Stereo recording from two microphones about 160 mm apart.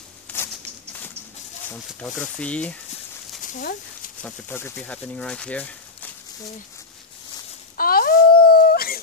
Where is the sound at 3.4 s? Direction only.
55° left (ahead or behind).